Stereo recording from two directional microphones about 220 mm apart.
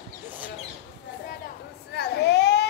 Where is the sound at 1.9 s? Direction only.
50° left (ahead or behind).